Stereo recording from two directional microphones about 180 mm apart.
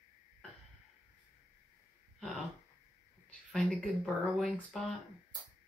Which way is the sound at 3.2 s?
5° left (ahead or behind).